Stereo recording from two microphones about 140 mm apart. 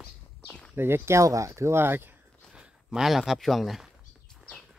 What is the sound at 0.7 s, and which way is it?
Speech, 15° right (ahead or behind).